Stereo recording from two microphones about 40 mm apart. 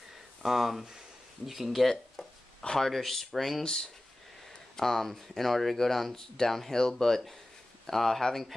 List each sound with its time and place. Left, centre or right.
0.4 s speech: centre
3.6 s speech: centre